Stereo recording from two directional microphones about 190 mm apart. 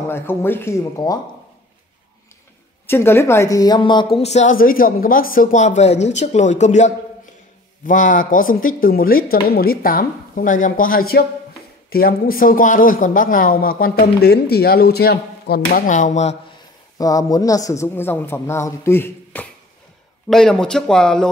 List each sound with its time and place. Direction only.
0.1 s a woman's voice: 10° left (ahead or behind)
2.9 s a woman's voice: 10° left (ahead or behind); by 16.3 s 40° left (ahead or behind)
17.0 s a woman's voice: 20° left (ahead or behind); by 21.3 s 5° left (ahead or behind)